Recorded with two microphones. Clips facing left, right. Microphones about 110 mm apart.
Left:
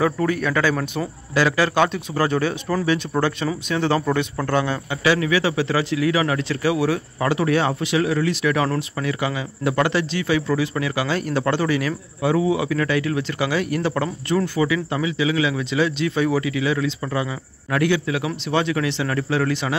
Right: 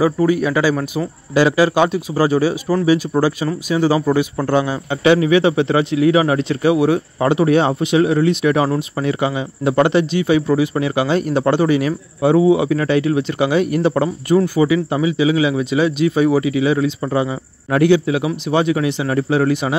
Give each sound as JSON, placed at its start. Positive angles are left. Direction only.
{"t": 0.0, "sound": "speech", "side_deg": -10}